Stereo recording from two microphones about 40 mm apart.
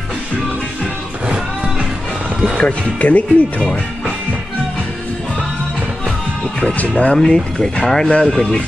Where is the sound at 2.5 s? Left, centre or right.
Left.